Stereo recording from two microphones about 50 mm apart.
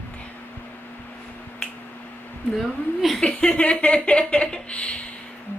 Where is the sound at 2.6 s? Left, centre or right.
Centre.